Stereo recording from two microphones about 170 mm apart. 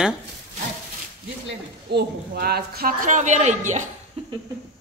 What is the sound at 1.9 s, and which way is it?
A woman's voice, 75° right (ahead or behind).